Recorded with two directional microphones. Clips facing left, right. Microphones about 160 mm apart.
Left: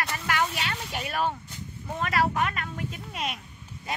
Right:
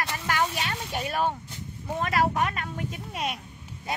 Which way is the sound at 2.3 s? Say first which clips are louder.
Right 1 dB; 15° right (ahead or behind).